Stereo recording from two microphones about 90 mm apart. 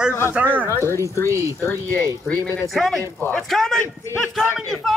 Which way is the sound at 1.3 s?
35° right (ahead or behind).